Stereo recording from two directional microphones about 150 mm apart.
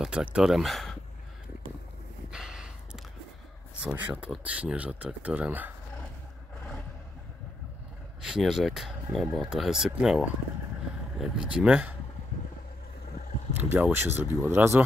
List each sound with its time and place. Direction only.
0.0 s speech: 5° right (ahead or behind)
2.3 s gasp: 5° right (ahead or behind)
3.8 s speech: 10° right (ahead or behind)
8.2 s speech: 5° right (ahead or behind)
13.6 s speech: 10° right (ahead or behind)